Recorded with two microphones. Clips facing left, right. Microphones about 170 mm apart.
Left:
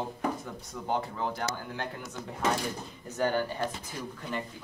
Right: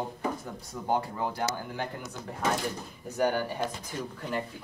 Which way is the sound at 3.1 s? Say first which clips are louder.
Right 1 dB; 15° right (ahead or behind).